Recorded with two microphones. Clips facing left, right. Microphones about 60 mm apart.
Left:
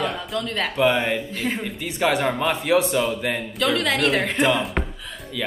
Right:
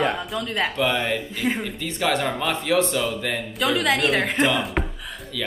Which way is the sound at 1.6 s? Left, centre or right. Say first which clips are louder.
Left 2 dB; centre.